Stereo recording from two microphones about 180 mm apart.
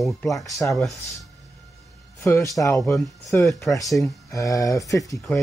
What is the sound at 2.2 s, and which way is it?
Speech, 15° left (ahead or behind).